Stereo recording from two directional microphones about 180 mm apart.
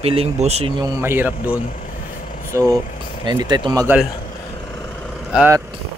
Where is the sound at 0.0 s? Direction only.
35° right (ahead or behind).